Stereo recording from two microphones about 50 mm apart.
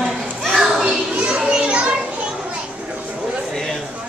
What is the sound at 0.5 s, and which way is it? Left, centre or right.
Children playing, centre.